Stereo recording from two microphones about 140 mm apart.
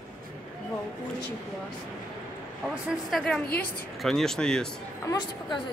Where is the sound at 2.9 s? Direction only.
Centre (ahead or behind).